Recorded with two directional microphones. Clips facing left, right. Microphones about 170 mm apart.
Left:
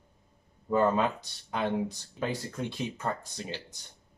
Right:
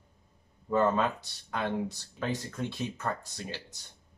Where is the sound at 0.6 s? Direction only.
15° left (ahead or behind).